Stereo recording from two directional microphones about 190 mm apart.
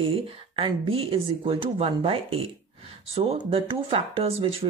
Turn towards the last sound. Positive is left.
turn(degrees=-30)  # may be behind; listen again after turning